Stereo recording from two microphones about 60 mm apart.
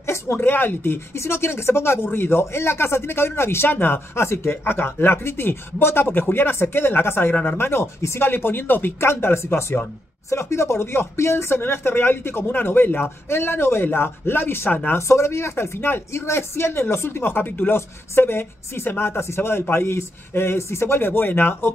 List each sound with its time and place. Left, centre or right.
0.0 s a sound: left
0.4 s speech: left
14.9 s speech: left
17.7 s speech: left